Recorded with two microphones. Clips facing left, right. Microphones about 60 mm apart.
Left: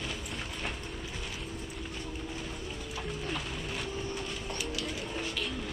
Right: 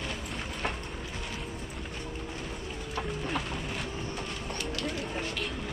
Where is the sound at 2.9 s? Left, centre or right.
Centre.